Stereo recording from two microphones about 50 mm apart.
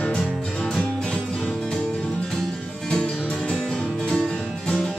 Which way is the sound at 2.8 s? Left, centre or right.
Centre.